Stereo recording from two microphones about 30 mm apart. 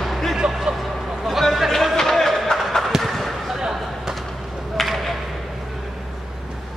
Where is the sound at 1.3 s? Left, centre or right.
Centre.